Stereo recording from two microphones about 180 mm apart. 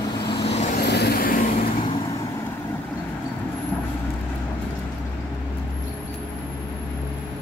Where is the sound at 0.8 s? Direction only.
65° left (ahead or behind).